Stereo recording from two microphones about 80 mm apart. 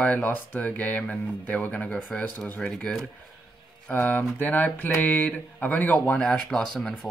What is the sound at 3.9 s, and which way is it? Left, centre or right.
Speech, left.